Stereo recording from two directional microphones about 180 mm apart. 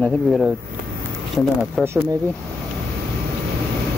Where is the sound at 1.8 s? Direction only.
15° right (ahead or behind).